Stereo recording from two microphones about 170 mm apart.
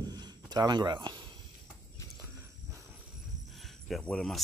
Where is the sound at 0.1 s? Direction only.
25° right (ahead or behind).